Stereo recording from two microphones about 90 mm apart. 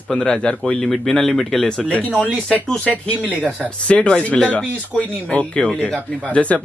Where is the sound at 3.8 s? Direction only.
10° left (ahead or behind).